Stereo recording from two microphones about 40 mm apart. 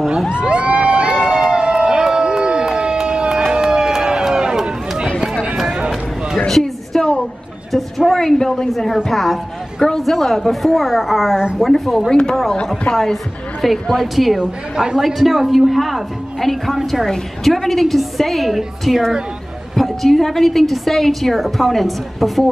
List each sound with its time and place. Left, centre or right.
0.3 s crowd: right
1.2 s a sound: centre
3.5 s run: centre
6.5 s a sound: centre
8.1 s a sound: centre
8.7 s a woman's voice: centre
11.3 s a woman's voice: centre
11.6 s a woman's voice: centre
12.1 s speech: centre
12.9 s a woman's voice: centre
14.4 s a woman's voice: right
15.0 s a woman's voice: centre